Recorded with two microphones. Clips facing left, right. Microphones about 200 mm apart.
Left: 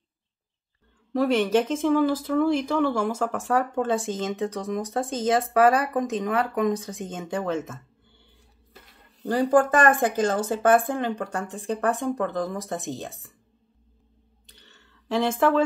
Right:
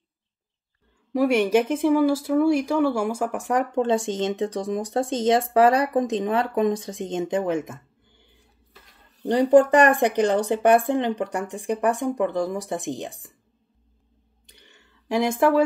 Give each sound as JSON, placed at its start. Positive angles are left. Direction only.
{"t": 1.1, "sound": "speech", "side_deg": -10}
{"t": 9.2, "sound": "speech", "side_deg": -20}
{"t": 14.4, "sound": "a sound", "side_deg": -10}